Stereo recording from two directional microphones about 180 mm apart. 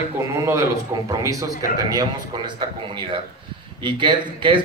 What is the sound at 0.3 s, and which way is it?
A man's voice, 15° right (ahead or behind).